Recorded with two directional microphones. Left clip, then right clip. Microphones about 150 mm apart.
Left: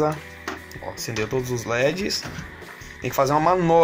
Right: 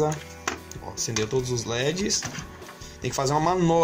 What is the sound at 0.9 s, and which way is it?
Music, centre (ahead or behind).